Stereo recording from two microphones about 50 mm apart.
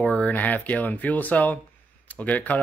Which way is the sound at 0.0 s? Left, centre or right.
Centre.